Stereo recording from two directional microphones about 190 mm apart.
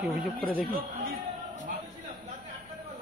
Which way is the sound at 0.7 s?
50° right (ahead or behind).